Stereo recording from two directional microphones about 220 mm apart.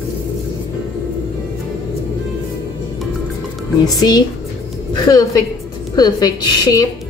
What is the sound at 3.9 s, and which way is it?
A woman's voice, 20° left (ahead or behind).